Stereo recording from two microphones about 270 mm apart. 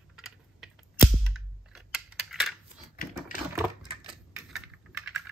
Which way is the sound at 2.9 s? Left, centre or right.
Left.